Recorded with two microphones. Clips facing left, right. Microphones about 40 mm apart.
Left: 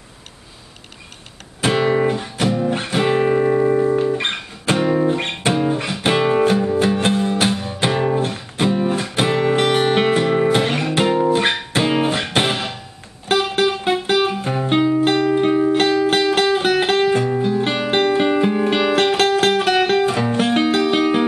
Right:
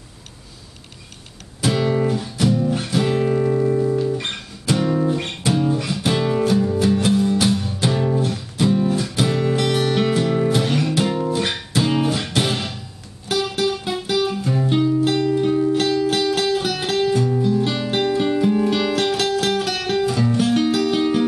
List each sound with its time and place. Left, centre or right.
1.6 s music: left